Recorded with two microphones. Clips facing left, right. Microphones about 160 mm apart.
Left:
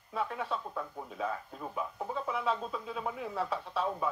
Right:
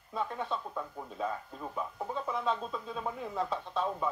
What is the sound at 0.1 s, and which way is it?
Speech, 10° left (ahead or behind).